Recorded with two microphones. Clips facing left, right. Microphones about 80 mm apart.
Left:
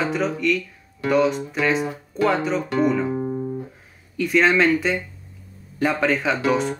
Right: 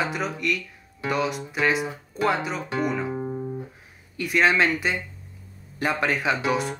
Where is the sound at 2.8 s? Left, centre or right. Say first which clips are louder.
Left 5 dB; centre.